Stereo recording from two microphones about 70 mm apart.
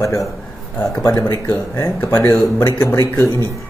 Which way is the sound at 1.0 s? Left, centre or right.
Left.